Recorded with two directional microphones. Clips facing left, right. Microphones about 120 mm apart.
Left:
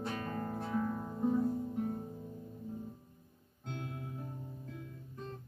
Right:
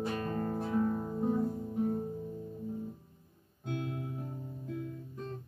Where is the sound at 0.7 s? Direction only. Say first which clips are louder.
Right 4 dB; 20° right (ahead or behind).